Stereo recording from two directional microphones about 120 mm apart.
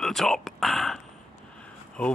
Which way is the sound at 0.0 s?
5° left (ahead or behind).